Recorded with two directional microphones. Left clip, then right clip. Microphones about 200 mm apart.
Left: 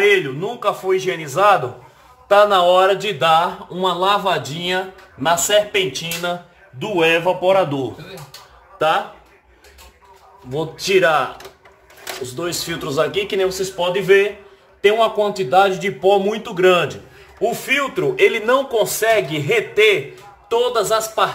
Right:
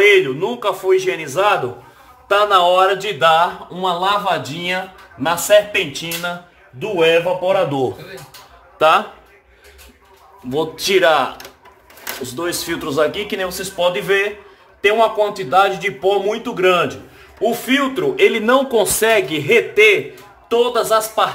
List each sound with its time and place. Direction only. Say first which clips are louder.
0.1 s a man's voice: right 4 dB; 15° right (ahead or behind); by 7.6 s centre (ahead or behind)
8.7 s speech: right 4 dB; 15° right (ahead or behind)
10.5 s a man's voice: right 1 dB; 10° right (ahead or behind)
12.3 s speech: right 2 dB; 5° right (ahead or behind)
18.8 s speech: right 2 dB; 25° right (ahead or behind)
19.4 s a man's voice: right 4 dB; 10° right (ahead or behind)